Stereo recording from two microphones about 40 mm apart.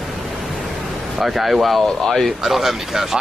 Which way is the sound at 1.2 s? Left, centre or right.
Centre.